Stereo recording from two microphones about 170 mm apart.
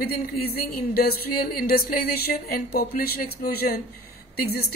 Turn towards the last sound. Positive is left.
turn(degrees=65)  # may be behind; listen again after turning